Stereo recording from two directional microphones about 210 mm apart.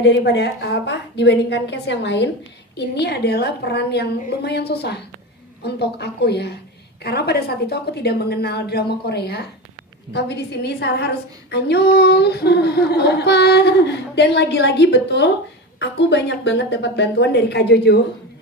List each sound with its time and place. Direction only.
0.0 s a woman's voice: 55° left (ahead or behind)